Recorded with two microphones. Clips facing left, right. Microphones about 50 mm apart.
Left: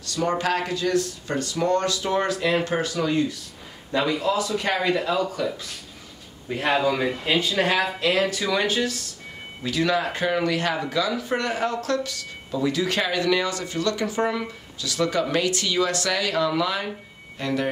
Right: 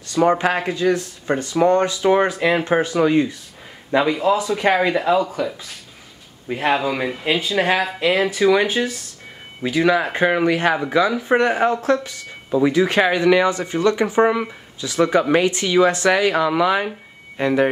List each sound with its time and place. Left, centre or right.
0.0 s speech: right